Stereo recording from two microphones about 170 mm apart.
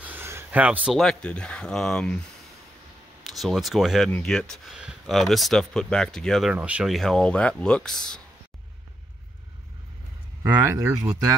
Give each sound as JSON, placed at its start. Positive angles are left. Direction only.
{"t": 0.0, "sound": "speech", "side_deg": -10}
{"t": 3.3, "sound": "speech", "side_deg": 0}
{"t": 10.4, "sound": "speech", "side_deg": -20}